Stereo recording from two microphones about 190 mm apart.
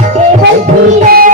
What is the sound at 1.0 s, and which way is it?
Music, 50° right (ahead or behind).